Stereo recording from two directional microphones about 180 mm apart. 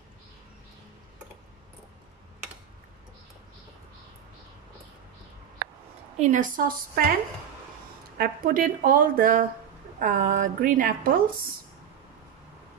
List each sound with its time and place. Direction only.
6.1 s a woman's voice: 40° right (ahead or behind)
8.2 s a woman's voice: 55° right (ahead or behind)